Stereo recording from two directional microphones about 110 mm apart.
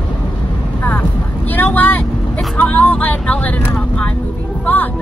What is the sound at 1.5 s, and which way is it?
Speech, 15° left (ahead or behind).